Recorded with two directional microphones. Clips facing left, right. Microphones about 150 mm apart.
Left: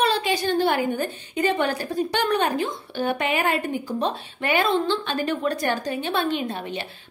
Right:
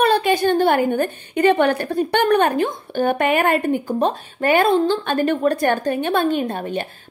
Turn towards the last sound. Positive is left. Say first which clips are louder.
# right 6 dB
turn(degrees=-50)  # may be behind; listen again after turning